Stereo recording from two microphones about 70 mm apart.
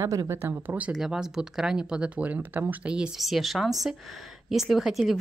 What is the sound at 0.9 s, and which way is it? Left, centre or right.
Speech, centre.